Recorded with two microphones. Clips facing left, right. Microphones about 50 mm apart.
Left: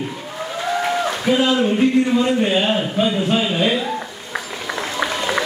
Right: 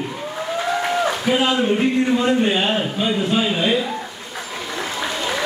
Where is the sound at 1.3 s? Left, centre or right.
Centre.